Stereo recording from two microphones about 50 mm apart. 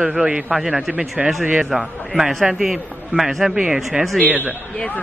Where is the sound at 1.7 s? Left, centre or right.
Centre.